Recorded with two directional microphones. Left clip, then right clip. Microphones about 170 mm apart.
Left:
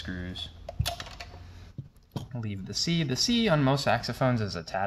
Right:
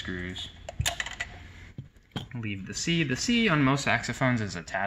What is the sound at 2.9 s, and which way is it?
Speech, 40° left (ahead or behind).